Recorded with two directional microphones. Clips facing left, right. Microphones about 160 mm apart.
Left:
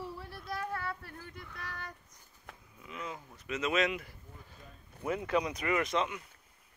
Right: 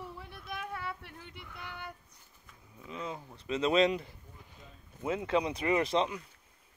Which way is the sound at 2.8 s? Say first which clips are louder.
Right 3 dB; 25° right (ahead or behind).